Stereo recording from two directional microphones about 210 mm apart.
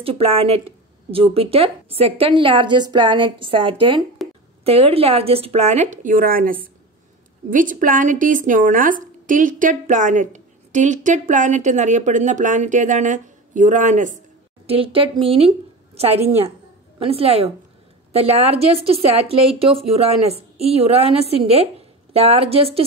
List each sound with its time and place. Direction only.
0.0 s a woman's voice: 30° right (ahead or behind)
4.2 s a sound: centre (ahead or behind)
4.6 s speech: 25° right (ahead or behind)
14.7 s a woman's voice: 25° right (ahead or behind)